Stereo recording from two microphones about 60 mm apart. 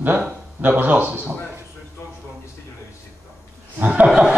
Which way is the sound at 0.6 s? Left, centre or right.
Right.